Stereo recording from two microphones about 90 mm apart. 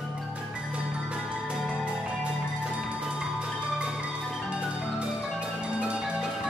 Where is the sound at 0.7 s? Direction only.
10° right (ahead or behind).